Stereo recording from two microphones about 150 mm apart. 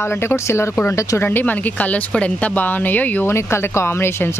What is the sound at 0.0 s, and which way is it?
Speech, 15° left (ahead or behind).